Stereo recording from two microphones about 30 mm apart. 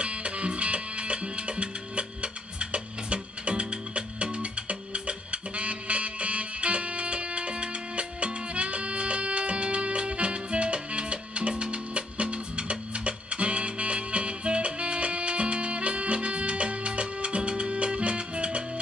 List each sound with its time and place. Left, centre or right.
0.0 s music: right